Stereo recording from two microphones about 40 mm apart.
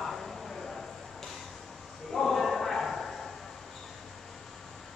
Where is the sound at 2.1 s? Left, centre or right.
Centre.